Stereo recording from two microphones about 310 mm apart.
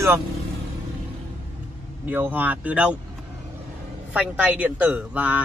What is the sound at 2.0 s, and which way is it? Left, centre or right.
Speech, centre.